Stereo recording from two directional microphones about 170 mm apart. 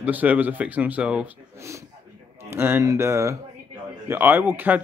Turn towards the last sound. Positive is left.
turn(degrees=-10)  # may be behind; listen again after turning